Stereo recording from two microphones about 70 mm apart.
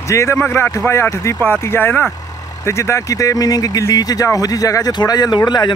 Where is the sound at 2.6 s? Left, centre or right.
Left.